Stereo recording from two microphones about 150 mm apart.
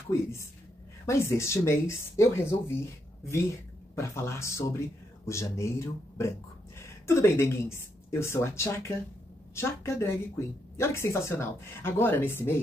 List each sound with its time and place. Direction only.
0.1 s a woman's voice: 20° left (ahead or behind)
3.9 s a woman's voice: 20° left (ahead or behind)